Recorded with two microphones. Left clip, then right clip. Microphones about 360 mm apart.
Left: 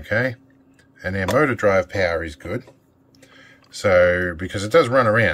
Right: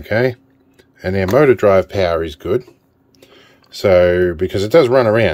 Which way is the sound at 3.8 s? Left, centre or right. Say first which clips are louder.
Right 4 dB; right.